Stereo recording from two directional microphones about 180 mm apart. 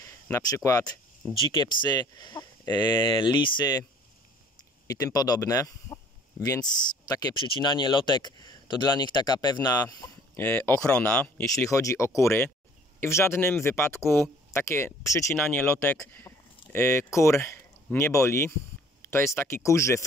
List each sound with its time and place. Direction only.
0.0 s a sound: 20° left (ahead or behind)
0.7 s speech: 15° left (ahead or behind)
4.8 s speech: 20° left (ahead or behind)